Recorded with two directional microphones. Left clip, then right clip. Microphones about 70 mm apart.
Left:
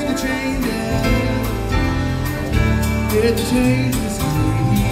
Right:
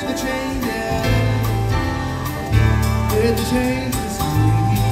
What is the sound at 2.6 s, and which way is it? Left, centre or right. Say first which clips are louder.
Music: even; left.